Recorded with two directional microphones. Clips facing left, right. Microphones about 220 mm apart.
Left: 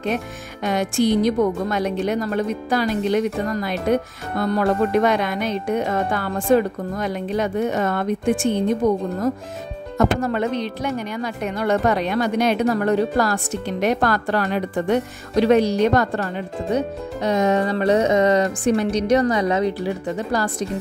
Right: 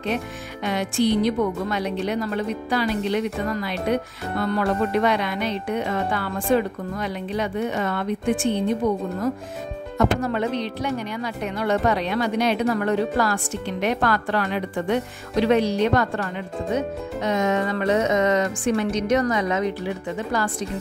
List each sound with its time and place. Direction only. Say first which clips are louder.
0.7 s speech: left 2 dB; 45° left (ahead or behind)